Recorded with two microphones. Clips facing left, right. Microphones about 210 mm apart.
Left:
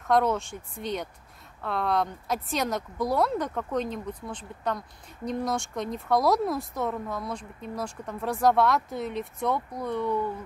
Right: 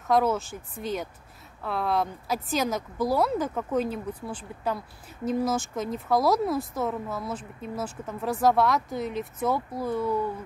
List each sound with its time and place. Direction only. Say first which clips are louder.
0.0 s speech: even; centre (ahead or behind)